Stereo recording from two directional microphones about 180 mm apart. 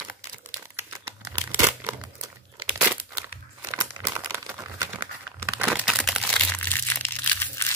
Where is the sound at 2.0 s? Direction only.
25° right (ahead or behind).